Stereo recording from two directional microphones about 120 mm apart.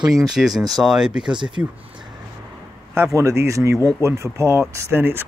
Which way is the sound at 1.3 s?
40° right (ahead or behind).